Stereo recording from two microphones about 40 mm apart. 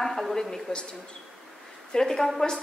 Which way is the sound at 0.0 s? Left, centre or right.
Centre.